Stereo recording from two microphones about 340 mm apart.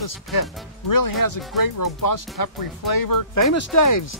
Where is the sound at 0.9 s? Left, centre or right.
Left.